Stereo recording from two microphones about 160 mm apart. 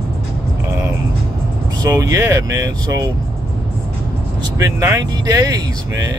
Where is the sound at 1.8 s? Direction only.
20° right (ahead or behind).